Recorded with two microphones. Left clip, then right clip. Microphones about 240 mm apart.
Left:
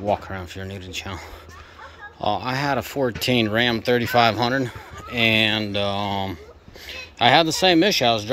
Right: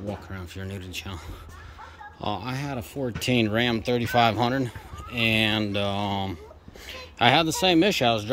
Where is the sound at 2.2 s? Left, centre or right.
Centre.